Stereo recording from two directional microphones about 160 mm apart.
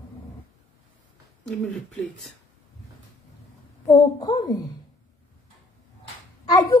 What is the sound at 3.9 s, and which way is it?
Speech, 25° left (ahead or behind).